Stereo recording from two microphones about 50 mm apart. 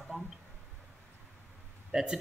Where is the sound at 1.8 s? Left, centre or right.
Centre.